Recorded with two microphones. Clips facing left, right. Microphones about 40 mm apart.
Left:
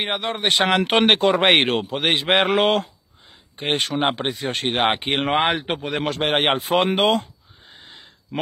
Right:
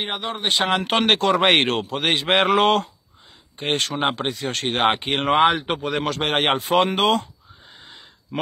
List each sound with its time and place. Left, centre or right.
0.0 s speech: left
1.2 s a man's voice: centre
7.8 s a sound: centre